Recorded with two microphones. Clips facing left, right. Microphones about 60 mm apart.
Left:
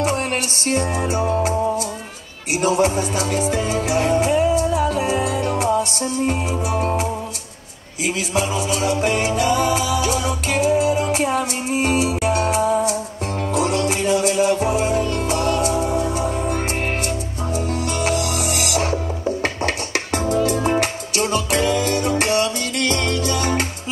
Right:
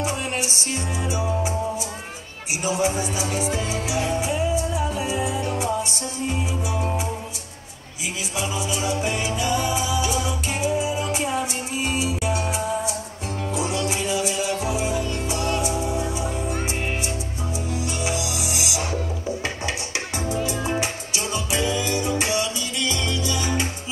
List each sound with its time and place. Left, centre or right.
0.0 s music: left
2.6 s music: left
8.4 s music: left
18.0 s music: left